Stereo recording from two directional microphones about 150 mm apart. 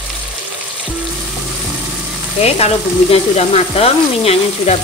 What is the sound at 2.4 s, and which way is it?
Frying, 45° left (ahead or behind).